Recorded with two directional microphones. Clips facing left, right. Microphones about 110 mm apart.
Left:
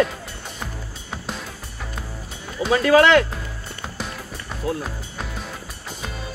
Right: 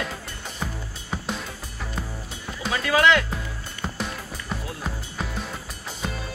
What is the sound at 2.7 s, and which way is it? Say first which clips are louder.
Speech: left 6 dB; 45° left (ahead or behind).